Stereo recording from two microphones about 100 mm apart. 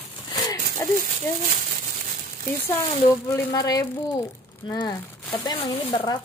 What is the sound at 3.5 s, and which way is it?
A woman's voice, 35° left (ahead or behind).